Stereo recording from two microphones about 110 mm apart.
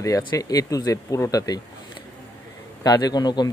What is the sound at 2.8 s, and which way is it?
Speech, 40° left (ahead or behind).